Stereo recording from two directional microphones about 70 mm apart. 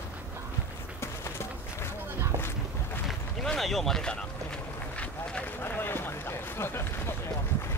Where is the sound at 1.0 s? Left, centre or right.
Left.